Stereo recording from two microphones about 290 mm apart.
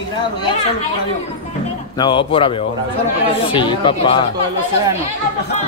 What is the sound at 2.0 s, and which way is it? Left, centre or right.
Speech, centre.